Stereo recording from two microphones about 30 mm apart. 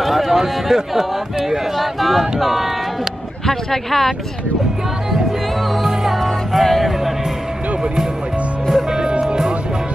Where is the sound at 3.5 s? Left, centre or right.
Centre.